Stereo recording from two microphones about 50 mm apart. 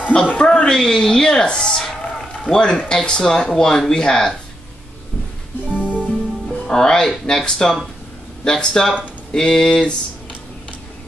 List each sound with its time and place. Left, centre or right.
0.1 s speech: centre
5.8 s music: right
6.7 s speech: centre